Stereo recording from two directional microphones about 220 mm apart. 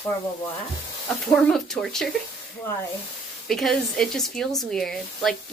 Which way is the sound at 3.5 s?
Centre (ahead or behind).